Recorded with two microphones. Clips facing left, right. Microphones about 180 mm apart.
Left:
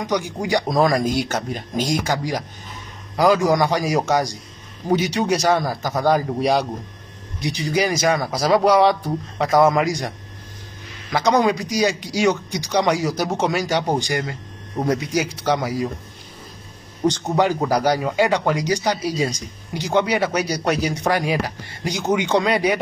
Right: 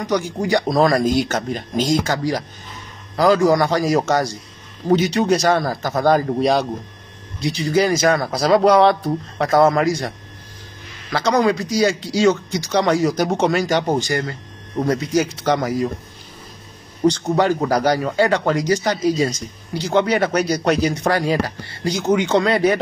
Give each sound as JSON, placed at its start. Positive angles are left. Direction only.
{"t": 0.1, "sound": "speech", "side_deg": 15}
{"t": 17.1, "sound": "speech", "side_deg": 15}